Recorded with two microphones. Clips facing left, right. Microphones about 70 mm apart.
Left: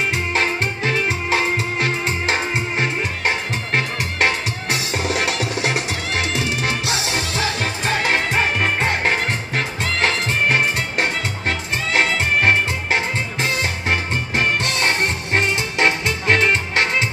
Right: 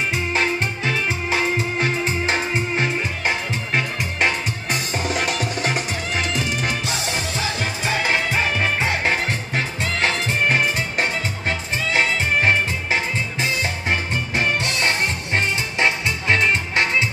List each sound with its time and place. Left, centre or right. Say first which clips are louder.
0.1 s music: left 1 dB; left